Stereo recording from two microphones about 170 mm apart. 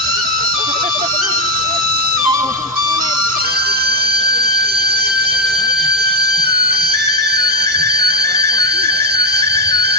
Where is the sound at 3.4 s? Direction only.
70° right (ahead or behind).